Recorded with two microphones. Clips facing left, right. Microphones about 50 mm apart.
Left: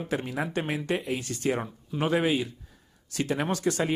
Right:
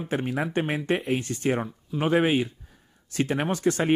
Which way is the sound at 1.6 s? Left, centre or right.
Centre.